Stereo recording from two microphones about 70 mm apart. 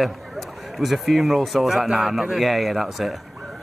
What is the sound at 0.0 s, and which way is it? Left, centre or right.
Speech, centre.